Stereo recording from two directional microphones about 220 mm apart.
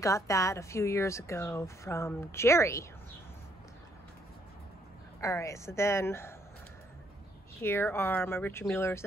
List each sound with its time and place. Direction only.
0.0 s speech: 15° left (ahead or behind)
5.2 s speech: 15° left (ahead or behind)
7.6 s speech: 10° left (ahead or behind)